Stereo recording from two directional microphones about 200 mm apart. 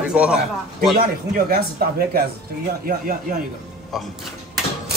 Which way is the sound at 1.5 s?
50° right (ahead or behind).